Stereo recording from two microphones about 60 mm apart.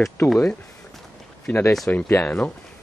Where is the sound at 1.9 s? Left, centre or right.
Left.